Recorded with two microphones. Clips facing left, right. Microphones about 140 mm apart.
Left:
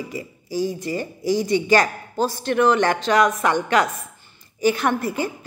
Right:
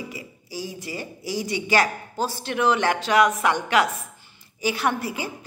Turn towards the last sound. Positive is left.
turn(degrees=50)  # may be behind; listen again after turning